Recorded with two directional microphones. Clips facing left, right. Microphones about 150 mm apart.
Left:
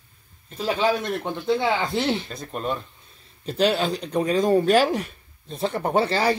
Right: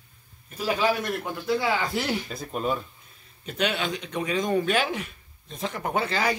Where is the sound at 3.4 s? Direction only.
35° left (ahead or behind).